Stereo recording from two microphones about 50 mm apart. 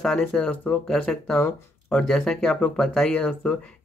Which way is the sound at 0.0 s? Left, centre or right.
Centre.